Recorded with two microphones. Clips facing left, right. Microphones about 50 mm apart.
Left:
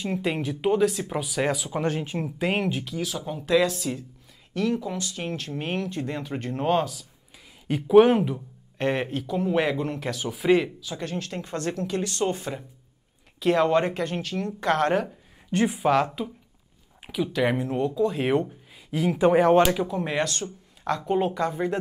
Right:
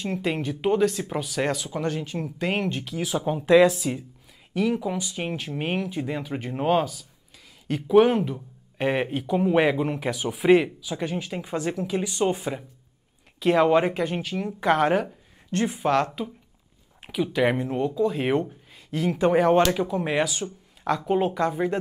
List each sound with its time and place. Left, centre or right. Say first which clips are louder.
0.0 s speech: even; centre
1.7 s speech: left 1 dB; centre
3.0 s speech: right 4 dB; right; by 8.4 s centre
8.7 s speech: right 1 dB; centre
15.5 s speech: left 1 dB; centre